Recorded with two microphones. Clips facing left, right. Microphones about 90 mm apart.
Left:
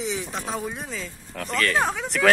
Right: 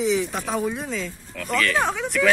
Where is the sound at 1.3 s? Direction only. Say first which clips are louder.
Left 3 dB; 40° left (ahead or behind).